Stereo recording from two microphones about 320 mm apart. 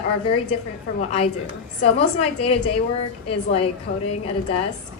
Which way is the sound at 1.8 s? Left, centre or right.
Centre.